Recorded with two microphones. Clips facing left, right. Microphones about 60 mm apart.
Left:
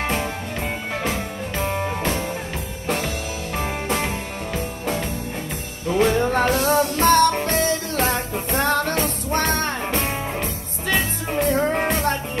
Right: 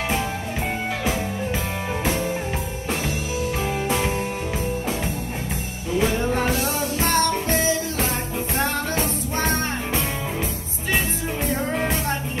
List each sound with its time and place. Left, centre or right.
3.5 s music: left
5.9 s music: left
10.9 s music: left